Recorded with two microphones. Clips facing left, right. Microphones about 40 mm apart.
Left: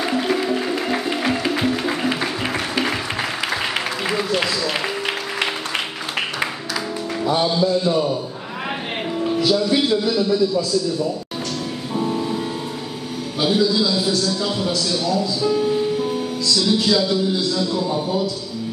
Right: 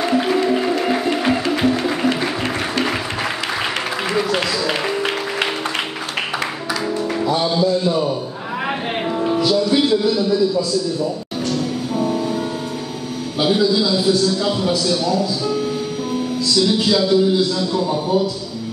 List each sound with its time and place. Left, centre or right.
0.0 s music: centre
7.4 s a man's voice: centre
9.4 s a man's voice: centre
12.0 s music: centre
13.4 s a man's voice: centre
16.4 s speech: centre